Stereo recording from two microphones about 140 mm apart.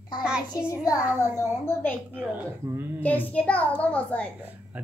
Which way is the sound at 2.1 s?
10° right (ahead or behind).